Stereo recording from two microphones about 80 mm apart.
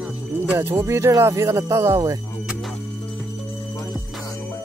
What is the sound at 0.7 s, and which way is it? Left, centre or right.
Speech, right.